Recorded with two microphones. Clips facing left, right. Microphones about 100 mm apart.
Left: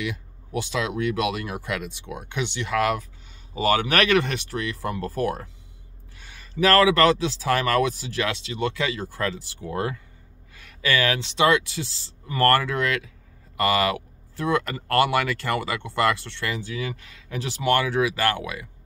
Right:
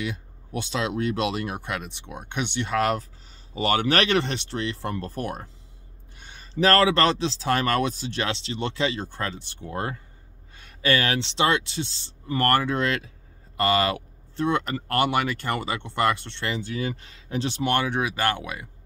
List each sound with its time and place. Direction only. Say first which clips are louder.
0.6 s speech: left 1 dB; 30° right (ahead or behind)
6.1 s a sound: right 1 dB; 25° right (ahead or behind)
6.6 s speech: left 2 dB; 30° right (ahead or behind)